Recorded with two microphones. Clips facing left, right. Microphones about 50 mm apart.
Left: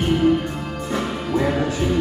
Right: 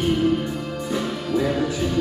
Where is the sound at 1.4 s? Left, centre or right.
Left.